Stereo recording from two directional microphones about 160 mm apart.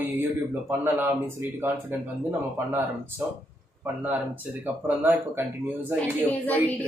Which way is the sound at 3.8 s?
10° right (ahead or behind).